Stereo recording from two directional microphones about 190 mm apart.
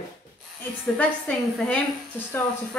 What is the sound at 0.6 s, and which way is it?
A woman's voice, 5° left (ahead or behind).